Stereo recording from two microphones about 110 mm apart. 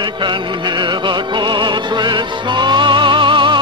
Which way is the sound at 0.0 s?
45° right (ahead or behind).